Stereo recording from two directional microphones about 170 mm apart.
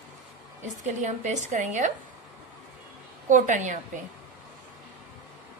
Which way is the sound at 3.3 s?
45° right (ahead or behind).